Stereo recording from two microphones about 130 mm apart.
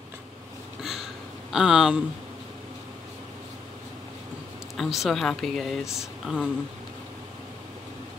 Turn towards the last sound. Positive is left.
turn(degrees=-5)  # may be behind; listen again after turning